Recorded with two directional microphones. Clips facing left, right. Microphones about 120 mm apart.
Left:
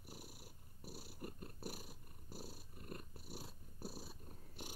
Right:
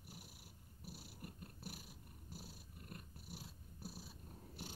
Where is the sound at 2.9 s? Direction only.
40° left (ahead or behind).